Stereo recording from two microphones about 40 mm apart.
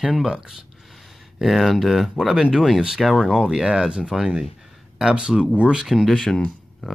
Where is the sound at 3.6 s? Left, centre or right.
Centre.